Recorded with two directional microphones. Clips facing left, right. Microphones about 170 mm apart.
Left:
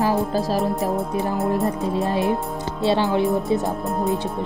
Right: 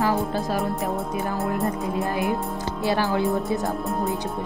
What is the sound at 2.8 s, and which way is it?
Speech, 20° left (ahead or behind).